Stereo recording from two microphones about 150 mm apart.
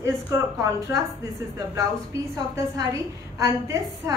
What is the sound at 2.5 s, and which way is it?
Speech, 25° right (ahead or behind).